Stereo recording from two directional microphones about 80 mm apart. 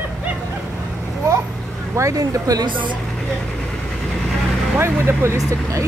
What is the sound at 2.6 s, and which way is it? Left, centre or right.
Speech, right.